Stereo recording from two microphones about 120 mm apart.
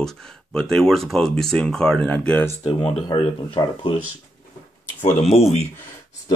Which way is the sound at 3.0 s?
40° left (ahead or behind).